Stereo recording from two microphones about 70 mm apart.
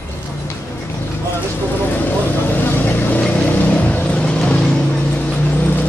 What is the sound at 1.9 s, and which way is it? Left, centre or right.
Vehicle, left.